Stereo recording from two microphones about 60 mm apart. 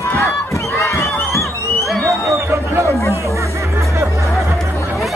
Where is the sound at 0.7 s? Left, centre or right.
Left.